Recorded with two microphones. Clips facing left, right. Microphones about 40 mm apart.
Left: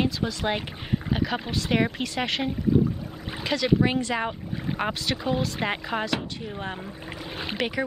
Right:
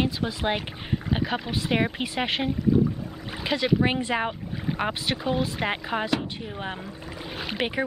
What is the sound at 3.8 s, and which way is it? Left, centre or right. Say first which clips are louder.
Speech: even; right.